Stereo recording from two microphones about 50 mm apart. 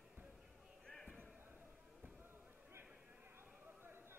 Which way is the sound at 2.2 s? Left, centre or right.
Right.